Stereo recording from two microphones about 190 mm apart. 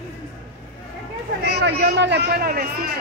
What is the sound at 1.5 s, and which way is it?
Speech, 65° right (ahead or behind).